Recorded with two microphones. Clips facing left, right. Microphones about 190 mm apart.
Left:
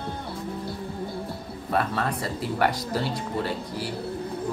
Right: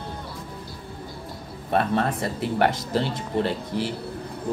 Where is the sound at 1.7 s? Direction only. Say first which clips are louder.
Right 3 dB; 25° right (ahead or behind).